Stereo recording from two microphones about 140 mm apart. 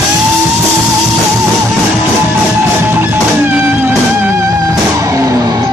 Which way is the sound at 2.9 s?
15° right (ahead or behind).